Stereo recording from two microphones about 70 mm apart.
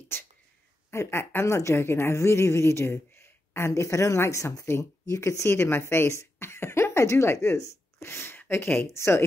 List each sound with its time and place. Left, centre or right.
0.1 s a sound: left
0.8 s a woman's voice: left
8.1 s a woman's voice: left